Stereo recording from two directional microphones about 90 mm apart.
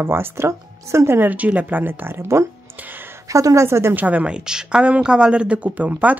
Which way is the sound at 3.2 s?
35° right (ahead or behind).